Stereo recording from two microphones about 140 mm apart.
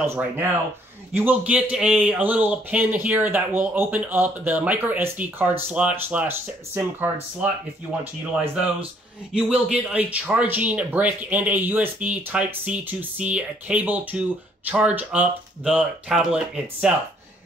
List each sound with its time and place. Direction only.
0.0 s speech: 15° right (ahead or behind)
9.3 s speech: 5° right (ahead or behind)